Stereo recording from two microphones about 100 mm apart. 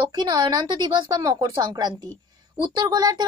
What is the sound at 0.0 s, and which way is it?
A woman's voice, 50° right (ahead or behind).